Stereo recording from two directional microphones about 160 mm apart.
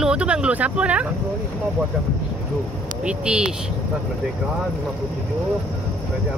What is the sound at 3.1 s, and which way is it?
Speech, 5° right (ahead or behind).